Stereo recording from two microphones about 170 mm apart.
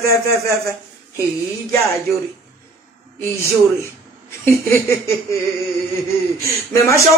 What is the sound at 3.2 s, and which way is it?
A man's voice, 15° left (ahead or behind).